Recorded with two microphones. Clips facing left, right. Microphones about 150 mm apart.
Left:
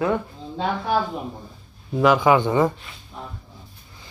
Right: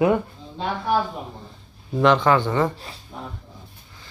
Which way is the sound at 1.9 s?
5° left (ahead or behind).